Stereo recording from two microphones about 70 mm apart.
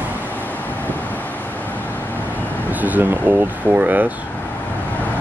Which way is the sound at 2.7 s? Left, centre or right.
Right.